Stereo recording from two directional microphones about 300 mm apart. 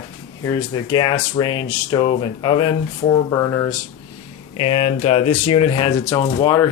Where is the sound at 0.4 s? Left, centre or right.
Centre.